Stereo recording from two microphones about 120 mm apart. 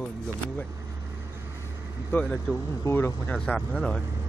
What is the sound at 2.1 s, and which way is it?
Speech, 10° left (ahead or behind).